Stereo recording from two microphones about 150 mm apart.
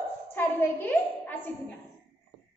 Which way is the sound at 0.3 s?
15° left (ahead or behind).